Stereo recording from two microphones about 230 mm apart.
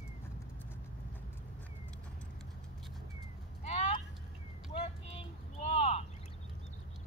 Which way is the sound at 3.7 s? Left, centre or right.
Left.